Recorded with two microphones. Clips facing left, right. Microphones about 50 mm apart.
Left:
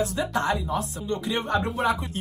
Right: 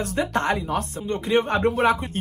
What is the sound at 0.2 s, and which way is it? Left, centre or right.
Speech, right.